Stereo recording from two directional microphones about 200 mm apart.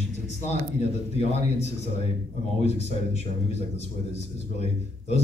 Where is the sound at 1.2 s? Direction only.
30° left (ahead or behind).